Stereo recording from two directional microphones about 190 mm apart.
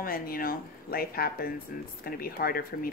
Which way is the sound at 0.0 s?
50° left (ahead or behind).